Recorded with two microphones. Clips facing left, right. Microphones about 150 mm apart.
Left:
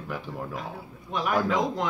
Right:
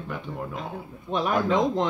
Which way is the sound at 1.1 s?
30° right (ahead or behind).